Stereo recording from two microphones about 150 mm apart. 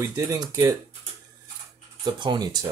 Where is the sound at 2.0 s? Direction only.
30° right (ahead or behind).